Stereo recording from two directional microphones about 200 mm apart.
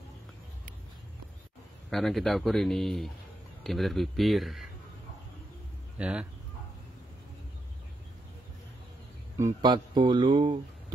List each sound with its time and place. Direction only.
1.9 s a man's voice: centre (ahead or behind)
5.9 s speech: 5° right (ahead or behind)
9.4 s speech: 20° right (ahead or behind)